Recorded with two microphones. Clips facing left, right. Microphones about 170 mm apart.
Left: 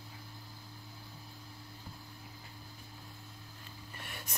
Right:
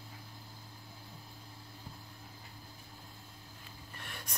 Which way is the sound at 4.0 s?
5° left (ahead or behind).